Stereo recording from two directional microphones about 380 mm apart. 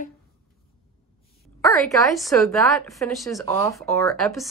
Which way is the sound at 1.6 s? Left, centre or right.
Centre.